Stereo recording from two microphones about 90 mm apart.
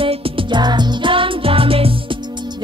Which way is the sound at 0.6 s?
55° right (ahead or behind).